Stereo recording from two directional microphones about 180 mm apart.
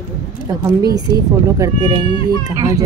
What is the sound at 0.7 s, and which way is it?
A woman's voice, 20° right (ahead or behind).